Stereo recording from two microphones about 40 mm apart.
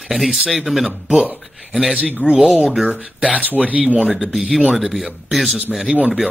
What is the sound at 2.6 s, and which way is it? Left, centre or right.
Speech, centre.